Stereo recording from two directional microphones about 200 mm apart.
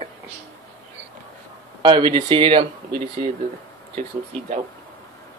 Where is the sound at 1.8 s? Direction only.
25° right (ahead or behind).